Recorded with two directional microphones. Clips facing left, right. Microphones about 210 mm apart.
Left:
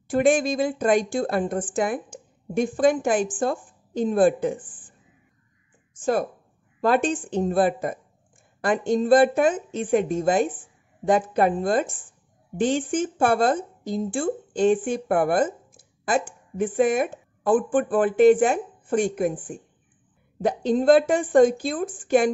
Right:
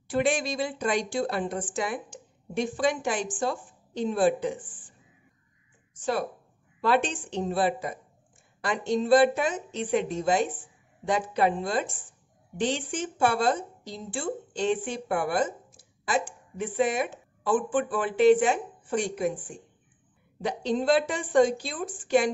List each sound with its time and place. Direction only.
0.1 s speech: 50° left (ahead or behind)
5.9 s speech: 50° left (ahead or behind)